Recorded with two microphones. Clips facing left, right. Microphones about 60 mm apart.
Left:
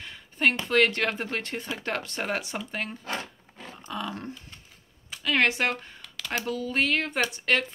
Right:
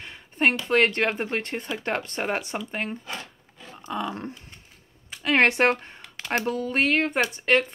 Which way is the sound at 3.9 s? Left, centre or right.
Right.